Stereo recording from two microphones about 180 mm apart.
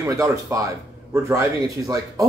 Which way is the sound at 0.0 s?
15° right (ahead or behind).